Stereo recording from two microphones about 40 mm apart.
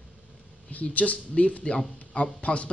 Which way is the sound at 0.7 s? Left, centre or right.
Left.